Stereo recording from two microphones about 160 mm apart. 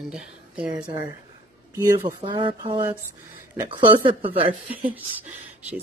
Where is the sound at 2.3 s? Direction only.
30° right (ahead or behind).